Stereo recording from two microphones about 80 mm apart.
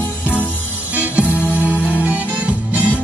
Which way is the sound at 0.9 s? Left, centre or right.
Centre.